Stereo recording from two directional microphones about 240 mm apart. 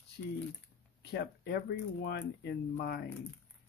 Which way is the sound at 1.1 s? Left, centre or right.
Left.